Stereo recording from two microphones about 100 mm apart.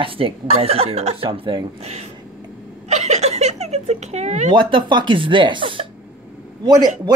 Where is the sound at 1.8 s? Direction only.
90° right.